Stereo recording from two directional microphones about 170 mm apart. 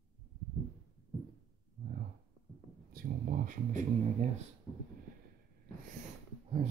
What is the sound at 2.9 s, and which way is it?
Speech, 50° right (ahead or behind).